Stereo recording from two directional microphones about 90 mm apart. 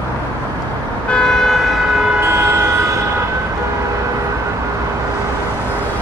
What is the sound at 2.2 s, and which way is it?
Vehicle, 30° right (ahead or behind).